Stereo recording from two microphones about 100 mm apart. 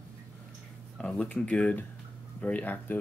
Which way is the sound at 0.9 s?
10° left (ahead or behind).